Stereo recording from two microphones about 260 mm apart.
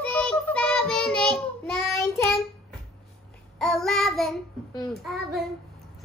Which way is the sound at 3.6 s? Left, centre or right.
Centre.